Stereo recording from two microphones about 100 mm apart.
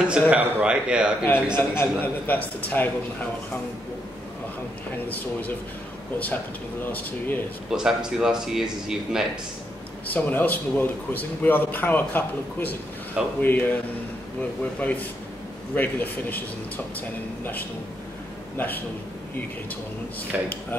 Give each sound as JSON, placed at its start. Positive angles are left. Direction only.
{"t": 0.3, "sound": "a man's voice", "side_deg": -10}
{"t": 1.2, "sound": "a man's voice", "side_deg": 25}
{"t": 5.0, "sound": "speech", "side_deg": 15}
{"t": 7.7, "sound": "a man's voice", "side_deg": -5}
{"t": 10.0, "sound": "a man's voice", "side_deg": 15}
{"t": 14.8, "sound": "speech", "side_deg": 15}
{"t": 18.6, "sound": "a man's voice", "side_deg": 20}
{"t": 20.3, "sound": "a man's voice", "side_deg": -10}